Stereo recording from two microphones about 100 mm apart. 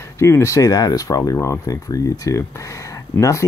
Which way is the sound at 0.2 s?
30° left (ahead or behind).